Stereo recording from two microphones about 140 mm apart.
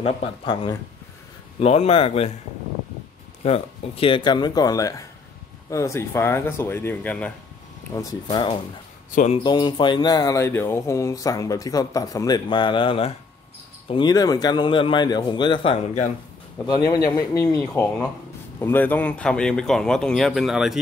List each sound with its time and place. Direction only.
0.0 s a man's voice: 40° left (ahead or behind)
3.4 s a man's voice: 45° left (ahead or behind); by 7.3 s 10° left (ahead or behind)
7.9 s a man's voice: 25° left (ahead or behind)
18.6 s speech: 15° left (ahead or behind); by 20.8 s centre (ahead or behind)